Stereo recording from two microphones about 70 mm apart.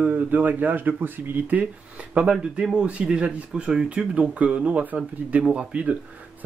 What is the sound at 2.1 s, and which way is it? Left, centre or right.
Speech, centre.